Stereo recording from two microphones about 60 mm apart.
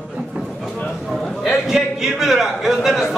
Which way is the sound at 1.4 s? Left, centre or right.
Centre.